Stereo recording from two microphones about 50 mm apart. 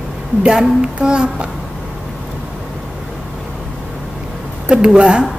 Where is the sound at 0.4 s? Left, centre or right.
Centre.